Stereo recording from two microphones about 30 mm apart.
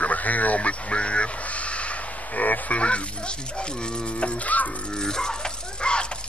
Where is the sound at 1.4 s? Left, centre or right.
Left.